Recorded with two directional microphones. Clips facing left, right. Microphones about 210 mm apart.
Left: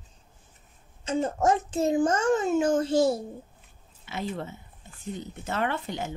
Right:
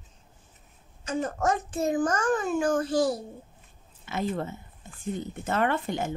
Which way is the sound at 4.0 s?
50° right (ahead or behind).